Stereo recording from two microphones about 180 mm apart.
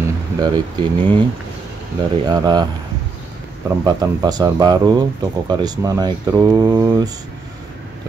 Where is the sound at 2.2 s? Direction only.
25° right (ahead or behind).